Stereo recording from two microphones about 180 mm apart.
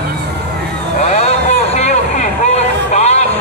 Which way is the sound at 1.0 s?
40° left (ahead or behind).